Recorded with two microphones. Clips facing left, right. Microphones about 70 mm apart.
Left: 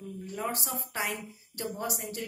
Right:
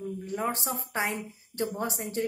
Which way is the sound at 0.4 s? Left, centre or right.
Right.